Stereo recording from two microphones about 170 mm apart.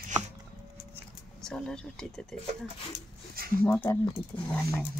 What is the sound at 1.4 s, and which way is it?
Speech, 5° left (ahead or behind).